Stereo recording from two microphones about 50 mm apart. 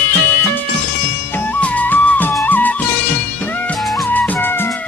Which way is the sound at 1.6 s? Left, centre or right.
Left.